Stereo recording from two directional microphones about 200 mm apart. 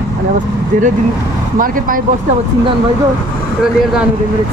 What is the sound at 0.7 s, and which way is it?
Speech, 40° right (ahead or behind).